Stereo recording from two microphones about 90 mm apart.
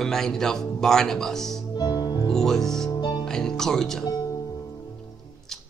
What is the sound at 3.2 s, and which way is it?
Speech, 5° left (ahead or behind).